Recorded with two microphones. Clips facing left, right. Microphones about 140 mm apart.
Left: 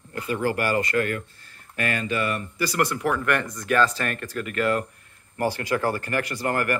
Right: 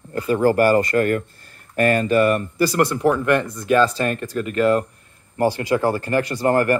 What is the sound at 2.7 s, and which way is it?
Speech, 30° right (ahead or behind).